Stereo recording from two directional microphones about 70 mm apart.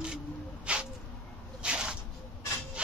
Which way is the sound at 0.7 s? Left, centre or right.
Centre.